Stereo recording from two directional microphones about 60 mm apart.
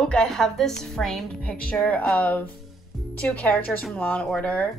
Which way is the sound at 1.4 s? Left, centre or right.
Left.